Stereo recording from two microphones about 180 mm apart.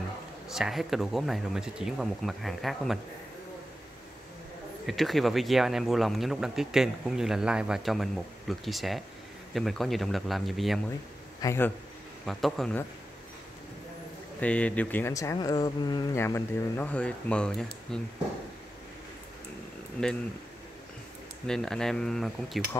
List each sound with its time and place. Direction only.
0.5 s speech: centre (ahead or behind)
4.8 s speech: centre (ahead or behind)
11.4 s speech: 10° left (ahead or behind)
12.3 s speech: centre (ahead or behind)
14.4 s speech: 5° left (ahead or behind)
21.5 s speech: 5° left (ahead or behind)